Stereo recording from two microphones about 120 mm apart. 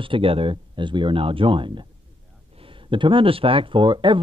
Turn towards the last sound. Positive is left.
turn(degrees=-40)  # may be behind; listen again after turning